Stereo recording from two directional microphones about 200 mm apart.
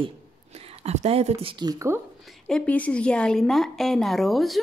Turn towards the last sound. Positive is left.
turn(degrees=0)  # may be behind; listen again after turning